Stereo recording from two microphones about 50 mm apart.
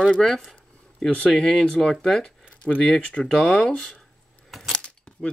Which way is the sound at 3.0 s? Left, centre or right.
Left.